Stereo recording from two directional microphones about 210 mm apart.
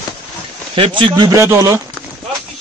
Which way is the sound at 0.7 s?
25° right (ahead or behind).